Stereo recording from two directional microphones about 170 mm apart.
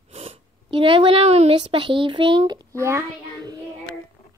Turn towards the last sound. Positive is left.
turn(degrees=-20)  # may be behind; listen again after turning